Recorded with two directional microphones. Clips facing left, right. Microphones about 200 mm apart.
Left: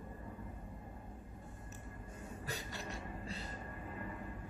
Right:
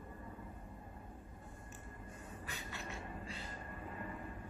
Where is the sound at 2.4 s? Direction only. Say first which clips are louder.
Left 3 dB; 40° left (ahead or behind).